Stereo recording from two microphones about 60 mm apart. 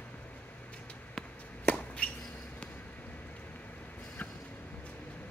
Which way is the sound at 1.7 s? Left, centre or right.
Centre.